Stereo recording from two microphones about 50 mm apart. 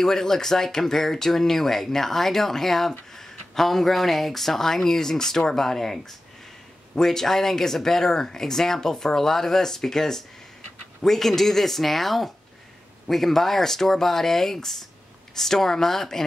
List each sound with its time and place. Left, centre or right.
0.0 s speech: centre